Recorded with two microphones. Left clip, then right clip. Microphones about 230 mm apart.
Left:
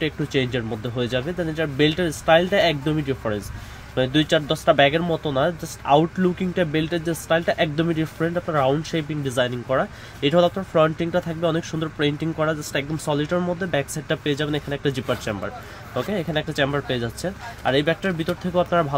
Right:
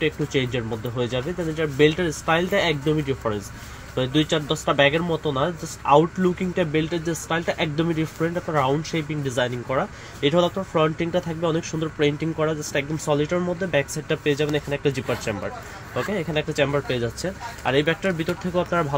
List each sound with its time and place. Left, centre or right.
0.0 s speech: left
13.3 s speech: left